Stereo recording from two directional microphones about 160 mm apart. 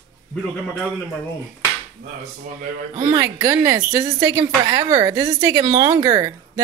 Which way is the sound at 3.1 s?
20° right (ahead or behind).